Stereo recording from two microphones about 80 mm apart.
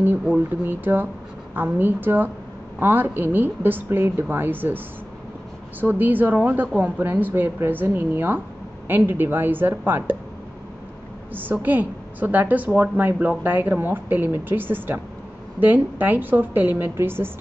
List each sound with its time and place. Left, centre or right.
0.7 s a woman's voice: right
11.3 s a woman's voice: right